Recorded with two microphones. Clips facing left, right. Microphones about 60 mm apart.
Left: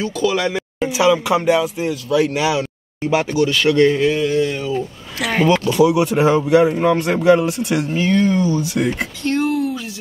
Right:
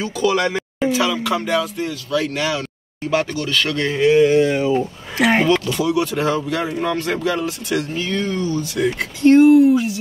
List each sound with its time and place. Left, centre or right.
0.0 s a sound: centre
0.9 s speech: centre
4.1 s speech: right
5.5 s speech: centre
9.2 s speech: right